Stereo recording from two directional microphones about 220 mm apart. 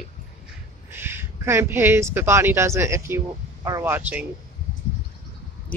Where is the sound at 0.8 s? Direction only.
10° right (ahead or behind).